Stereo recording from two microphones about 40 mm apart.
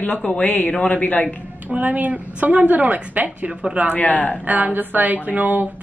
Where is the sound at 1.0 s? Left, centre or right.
Left.